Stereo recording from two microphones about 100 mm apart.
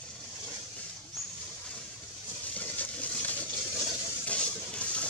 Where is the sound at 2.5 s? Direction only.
15° left (ahead or behind).